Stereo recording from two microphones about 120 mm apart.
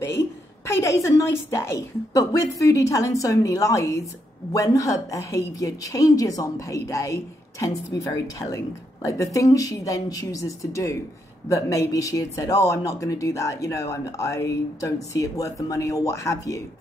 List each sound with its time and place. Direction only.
0.7 s a woman's voice: 25° left (ahead or behind)